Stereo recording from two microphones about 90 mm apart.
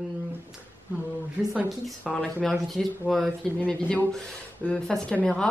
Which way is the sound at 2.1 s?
Centre (ahead or behind).